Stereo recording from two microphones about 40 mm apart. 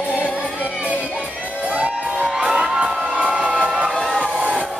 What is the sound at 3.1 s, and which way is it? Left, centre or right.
Crowd, right.